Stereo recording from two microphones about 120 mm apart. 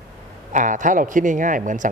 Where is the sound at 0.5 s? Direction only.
90° right.